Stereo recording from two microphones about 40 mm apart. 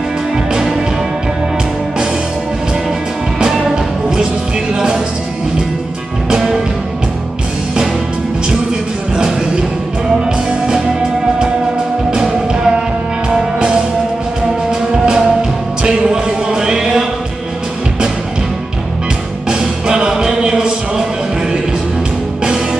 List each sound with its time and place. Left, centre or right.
0.5 s music: centre
3.3 s music: centre
6.3 s music: centre
9.1 s music: right
12.1 s music: centre
19.5 s music: centre